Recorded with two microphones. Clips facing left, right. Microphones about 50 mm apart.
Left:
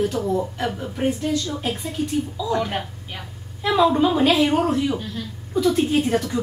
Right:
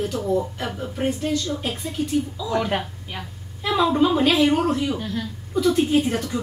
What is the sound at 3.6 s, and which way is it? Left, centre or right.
A woman's voice, centre.